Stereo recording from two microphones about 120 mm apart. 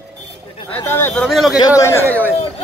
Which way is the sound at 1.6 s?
30° left (ahead or behind).